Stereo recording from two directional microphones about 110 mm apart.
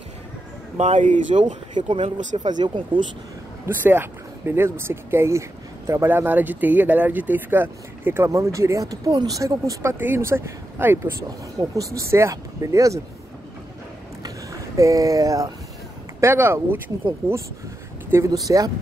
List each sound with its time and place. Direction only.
0.7 s speech: 90° right
1.8 s speech: 50° right (ahead or behind)
3.6 s speech: 20° right (ahead or behind)
11.2 s speech: 30° right (ahead or behind)
14.8 s speech: 30° right (ahead or behind)
18.1 s speech: 30° right (ahead or behind)